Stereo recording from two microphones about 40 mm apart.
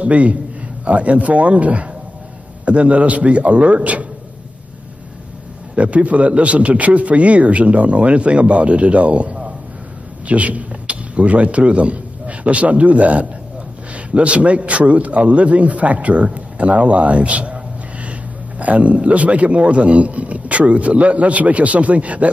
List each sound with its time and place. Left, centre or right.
0.0 s a man's voice: right
5.8 s speech: right
18.6 s speech: right